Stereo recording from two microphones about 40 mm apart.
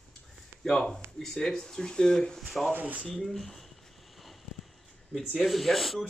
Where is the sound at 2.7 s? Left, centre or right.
Right.